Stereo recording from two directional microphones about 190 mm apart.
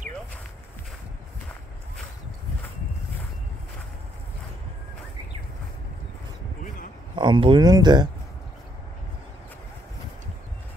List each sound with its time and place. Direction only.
7.2 s speech: 25° right (ahead or behind)